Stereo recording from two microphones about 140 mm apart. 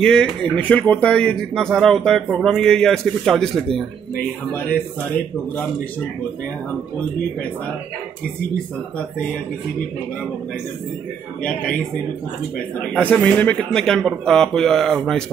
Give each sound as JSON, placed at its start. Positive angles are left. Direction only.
{"t": 0.0, "sound": "speech", "side_deg": 5}
{"t": 13.0, "sound": "speech", "side_deg": 10}